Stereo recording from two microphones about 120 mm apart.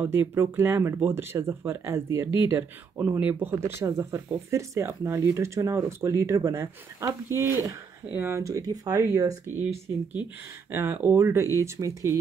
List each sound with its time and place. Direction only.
0.0 s speech: 20° right (ahead or behind)
10.7 s speech: 20° right (ahead or behind)